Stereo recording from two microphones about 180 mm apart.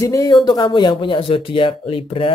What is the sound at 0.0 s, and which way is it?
Speech, 20° left (ahead or behind).